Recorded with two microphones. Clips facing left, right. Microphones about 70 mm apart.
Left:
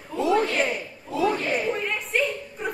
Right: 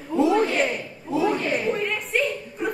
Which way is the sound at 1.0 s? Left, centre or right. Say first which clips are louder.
Right 1 dB; centre.